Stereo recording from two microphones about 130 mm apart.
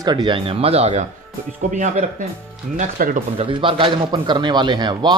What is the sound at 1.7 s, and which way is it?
Speech, 85° right.